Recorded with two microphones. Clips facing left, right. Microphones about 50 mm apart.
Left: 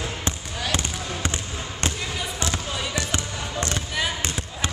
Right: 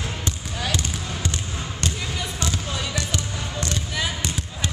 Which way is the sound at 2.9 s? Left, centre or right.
Left.